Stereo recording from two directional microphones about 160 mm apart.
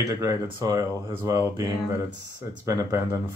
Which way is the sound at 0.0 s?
20° right (ahead or behind).